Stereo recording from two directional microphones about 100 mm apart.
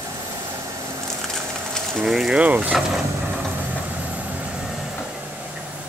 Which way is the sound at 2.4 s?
15° right (ahead or behind).